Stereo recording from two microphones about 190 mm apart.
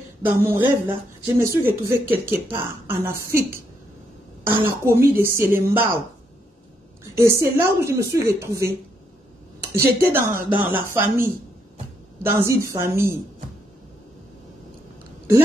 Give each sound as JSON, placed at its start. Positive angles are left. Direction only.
{"t": 0.2, "sound": "speech", "side_deg": -10}
{"t": 4.5, "sound": "speech", "side_deg": -10}
{"t": 7.2, "sound": "speech", "side_deg": -15}